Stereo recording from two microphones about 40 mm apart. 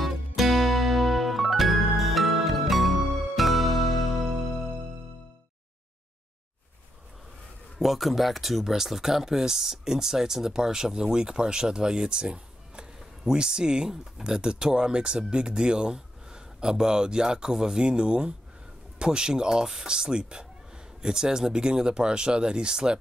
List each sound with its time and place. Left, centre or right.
0.0 s music: centre
7.8 s speech: centre